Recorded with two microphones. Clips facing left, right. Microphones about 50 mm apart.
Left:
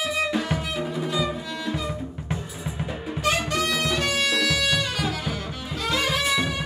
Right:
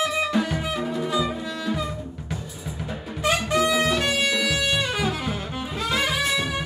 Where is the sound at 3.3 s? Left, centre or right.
Centre.